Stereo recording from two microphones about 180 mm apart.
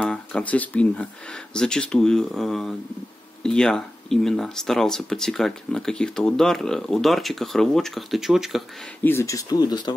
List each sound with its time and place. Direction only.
0.0 s speech: 5° left (ahead or behind)
9.0 s speech: 15° left (ahead or behind)